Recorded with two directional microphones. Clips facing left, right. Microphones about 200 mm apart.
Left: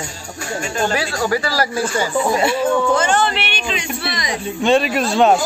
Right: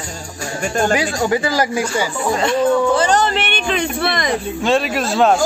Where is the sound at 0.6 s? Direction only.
50° right (ahead or behind).